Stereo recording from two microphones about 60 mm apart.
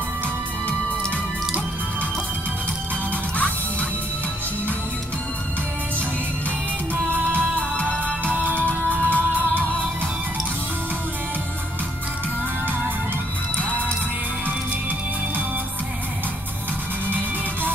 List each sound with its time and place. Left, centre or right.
7.1 s music: right
7.7 s music: left
8.4 s music: right
8.6 s music: left